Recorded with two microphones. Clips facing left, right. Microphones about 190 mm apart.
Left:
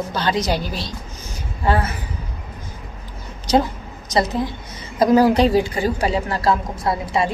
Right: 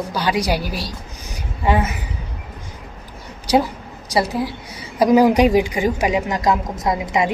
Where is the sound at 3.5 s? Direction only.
10° right (ahead or behind).